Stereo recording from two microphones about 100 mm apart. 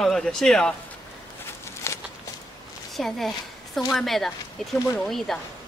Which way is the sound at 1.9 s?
30° left (ahead or behind).